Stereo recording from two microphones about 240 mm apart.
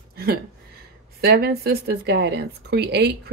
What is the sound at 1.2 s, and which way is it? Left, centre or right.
Speech, right.